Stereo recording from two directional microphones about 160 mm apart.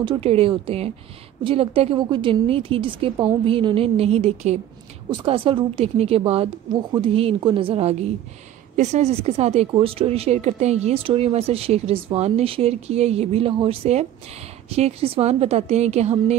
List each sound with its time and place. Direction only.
0.2 s speech: 40° right (ahead or behind)